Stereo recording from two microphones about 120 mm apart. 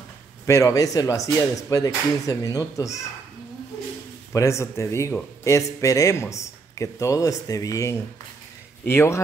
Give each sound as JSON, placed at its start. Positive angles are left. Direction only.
{"t": 0.5, "sound": "speech", "side_deg": 25}
{"t": 4.3, "sound": "speech", "side_deg": 25}